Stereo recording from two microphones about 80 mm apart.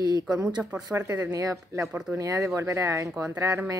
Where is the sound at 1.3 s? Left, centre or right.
Right.